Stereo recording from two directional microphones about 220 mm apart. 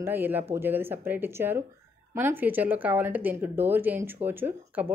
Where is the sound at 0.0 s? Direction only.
10° right (ahead or behind).